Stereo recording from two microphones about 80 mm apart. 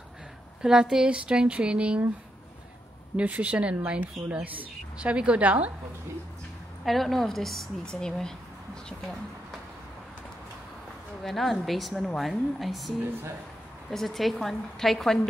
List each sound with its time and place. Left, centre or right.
0.6 s speech: centre
3.2 s speech: centre
6.8 s a woman's voice: centre
11.2 s a woman's voice: centre